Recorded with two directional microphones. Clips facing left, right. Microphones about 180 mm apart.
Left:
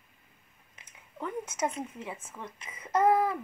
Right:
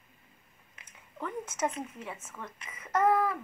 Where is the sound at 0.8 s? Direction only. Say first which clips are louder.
Left 1 dB; 10° left (ahead or behind).